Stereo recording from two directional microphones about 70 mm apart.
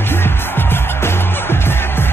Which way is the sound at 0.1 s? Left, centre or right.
Left.